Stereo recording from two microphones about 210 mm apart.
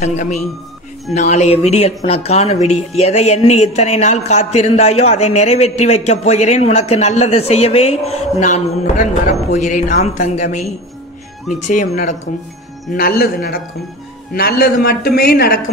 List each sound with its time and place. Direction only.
0.0 s speech: 35° left (ahead or behind)
12.9 s speech: 45° left (ahead or behind)